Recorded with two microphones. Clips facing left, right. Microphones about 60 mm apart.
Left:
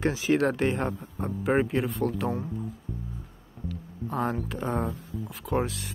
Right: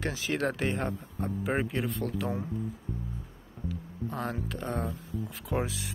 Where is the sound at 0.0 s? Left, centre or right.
Centre.